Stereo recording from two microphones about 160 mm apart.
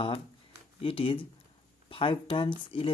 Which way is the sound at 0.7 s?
35° left (ahead or behind).